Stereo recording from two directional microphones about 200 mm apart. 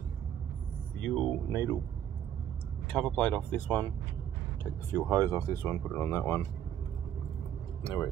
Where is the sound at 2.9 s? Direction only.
5° left (ahead or behind).